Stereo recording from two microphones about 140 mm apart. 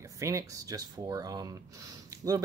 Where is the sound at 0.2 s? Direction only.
20° right (ahead or behind).